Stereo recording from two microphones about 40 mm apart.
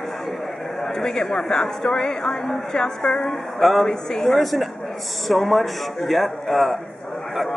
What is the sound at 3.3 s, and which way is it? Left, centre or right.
A man's voice, centre.